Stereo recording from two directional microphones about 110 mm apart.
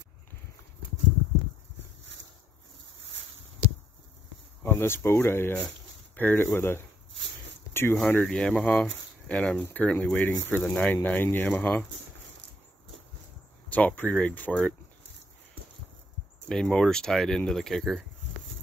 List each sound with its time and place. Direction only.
4.6 s speech: 20° left (ahead or behind)
7.7 s a sound: 20° left (ahead or behind)
8.1 s speech: 15° left (ahead or behind)
13.7 s speech: 15° left (ahead or behind)
16.4 s speech: 5° left (ahead or behind)